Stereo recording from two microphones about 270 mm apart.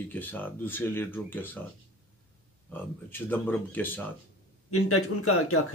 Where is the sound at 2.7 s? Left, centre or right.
Centre.